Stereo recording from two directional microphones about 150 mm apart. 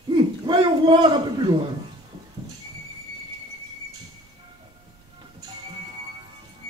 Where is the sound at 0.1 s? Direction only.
30° right (ahead or behind).